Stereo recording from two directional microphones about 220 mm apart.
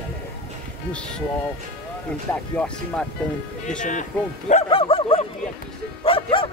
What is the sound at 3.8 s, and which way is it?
Speech, 35° left (ahead or behind).